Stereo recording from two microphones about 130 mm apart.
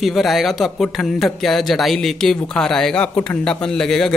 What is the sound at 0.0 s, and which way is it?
Speech, centre (ahead or behind).